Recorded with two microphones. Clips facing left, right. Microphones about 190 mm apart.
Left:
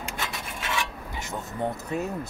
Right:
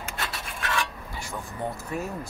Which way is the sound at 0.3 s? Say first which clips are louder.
Right 1 dB; 20° left (ahead or behind).